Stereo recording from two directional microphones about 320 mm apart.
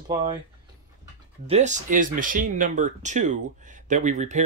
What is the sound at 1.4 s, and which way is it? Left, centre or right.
Speech, right.